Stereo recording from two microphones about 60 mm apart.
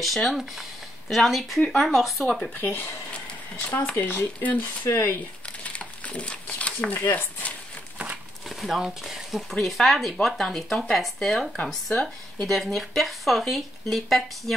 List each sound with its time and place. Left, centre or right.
0.0 s speech: centre
2.5 s speech: left
4.8 s speech: left
5.6 s a sound: left
8.5 s speech: centre
11.6 s speech: centre
12.4 s speech: centre